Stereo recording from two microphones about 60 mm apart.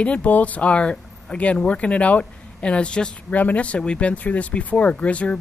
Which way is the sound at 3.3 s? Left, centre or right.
Left.